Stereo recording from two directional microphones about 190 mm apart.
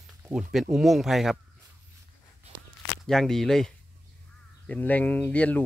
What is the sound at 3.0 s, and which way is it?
Speech, centre (ahead or behind).